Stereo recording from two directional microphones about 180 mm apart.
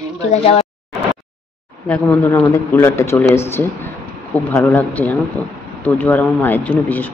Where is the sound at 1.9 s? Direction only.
15° left (ahead or behind).